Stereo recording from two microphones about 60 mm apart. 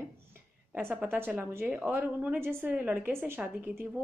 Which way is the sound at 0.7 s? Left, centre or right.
Right.